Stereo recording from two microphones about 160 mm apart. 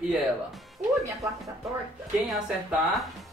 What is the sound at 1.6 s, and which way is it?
Speech, centre (ahead or behind).